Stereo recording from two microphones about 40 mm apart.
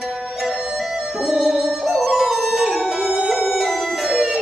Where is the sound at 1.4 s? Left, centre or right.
Right.